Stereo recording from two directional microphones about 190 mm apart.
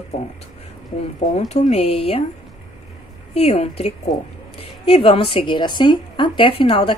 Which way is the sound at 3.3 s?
30° left (ahead or behind).